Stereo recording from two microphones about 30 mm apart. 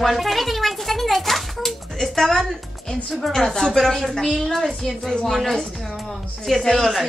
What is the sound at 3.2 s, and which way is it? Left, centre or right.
Speech, centre.